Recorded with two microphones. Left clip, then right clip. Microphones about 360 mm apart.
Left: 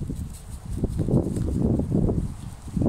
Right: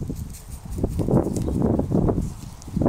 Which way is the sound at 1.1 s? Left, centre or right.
Right.